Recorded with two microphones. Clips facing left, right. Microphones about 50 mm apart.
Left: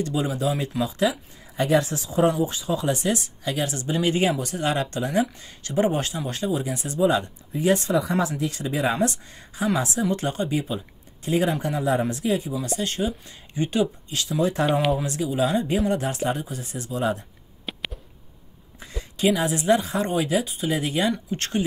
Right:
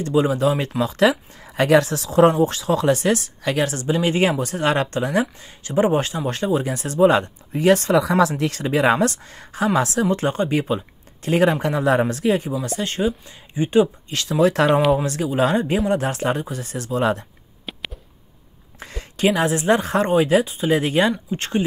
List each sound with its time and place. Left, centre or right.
0.0 s speech: right
0.8 s speech: right
5.7 s speech: right
10.1 s speech: right
11.2 s speech: right
13.5 s speech: right
14.1 s speech: right
14.4 s speech: right
15.2 s speech: right
17.7 s a sound: centre
18.9 s speech: right
21.1 s speech: centre